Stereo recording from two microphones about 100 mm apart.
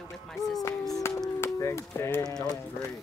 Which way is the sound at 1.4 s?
30° left (ahead or behind).